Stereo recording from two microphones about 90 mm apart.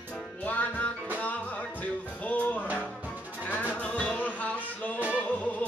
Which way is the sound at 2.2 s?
20° left (ahead or behind).